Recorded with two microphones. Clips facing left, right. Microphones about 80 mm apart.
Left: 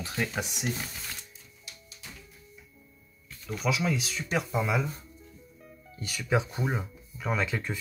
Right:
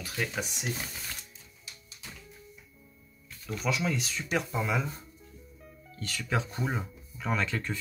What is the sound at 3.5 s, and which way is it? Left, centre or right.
Speech, centre.